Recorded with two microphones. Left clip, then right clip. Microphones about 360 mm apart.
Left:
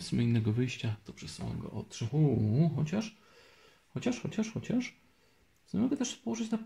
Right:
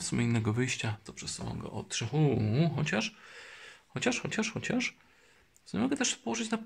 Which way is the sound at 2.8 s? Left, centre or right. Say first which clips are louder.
Right 6 dB; right.